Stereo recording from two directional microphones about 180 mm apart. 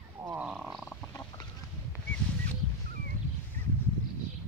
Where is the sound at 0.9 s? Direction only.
10° left (ahead or behind).